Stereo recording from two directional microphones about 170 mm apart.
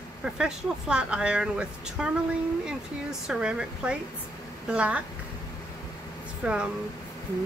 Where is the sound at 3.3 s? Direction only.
5° right (ahead or behind).